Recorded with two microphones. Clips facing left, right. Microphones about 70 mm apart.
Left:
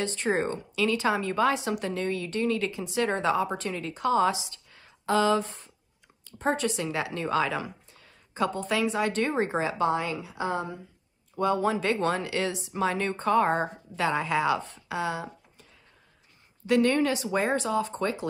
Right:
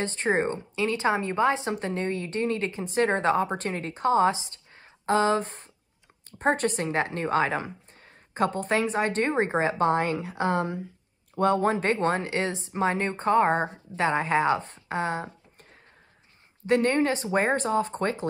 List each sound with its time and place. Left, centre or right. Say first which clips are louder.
0.0 s a woman's voice: right 2 dB; right
16.6 s a woman's voice: even; right